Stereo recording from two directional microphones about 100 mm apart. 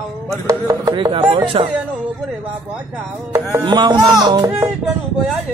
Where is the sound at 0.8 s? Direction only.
50° right (ahead or behind).